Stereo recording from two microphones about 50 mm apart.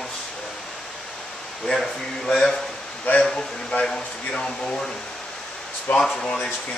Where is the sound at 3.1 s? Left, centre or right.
Left.